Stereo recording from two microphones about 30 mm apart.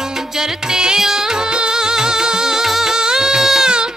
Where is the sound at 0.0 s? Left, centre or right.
Centre.